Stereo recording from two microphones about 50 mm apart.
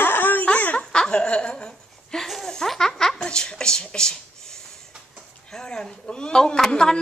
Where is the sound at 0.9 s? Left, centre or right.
Centre.